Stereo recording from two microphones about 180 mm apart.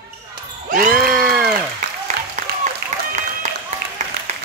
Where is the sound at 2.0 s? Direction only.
45° right (ahead or behind).